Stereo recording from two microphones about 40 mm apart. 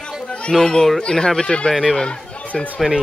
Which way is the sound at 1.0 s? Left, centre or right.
Centre.